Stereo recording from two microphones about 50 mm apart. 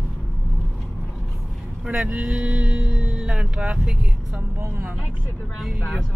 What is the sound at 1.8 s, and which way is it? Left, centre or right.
Speech, centre.